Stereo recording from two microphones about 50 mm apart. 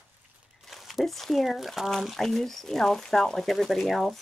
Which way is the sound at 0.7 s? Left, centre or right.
Centre.